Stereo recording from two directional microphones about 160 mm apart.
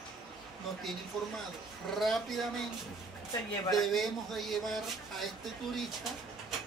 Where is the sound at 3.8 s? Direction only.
Centre (ahead or behind).